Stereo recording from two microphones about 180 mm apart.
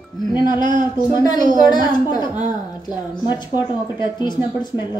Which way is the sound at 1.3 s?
45° right (ahead or behind).